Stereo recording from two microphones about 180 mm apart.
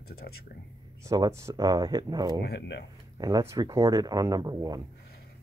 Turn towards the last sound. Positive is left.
turn(degrees=-20)  # may be behind; listen again after turning